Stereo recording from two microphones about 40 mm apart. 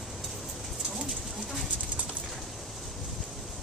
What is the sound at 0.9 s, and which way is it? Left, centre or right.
Bird, centre.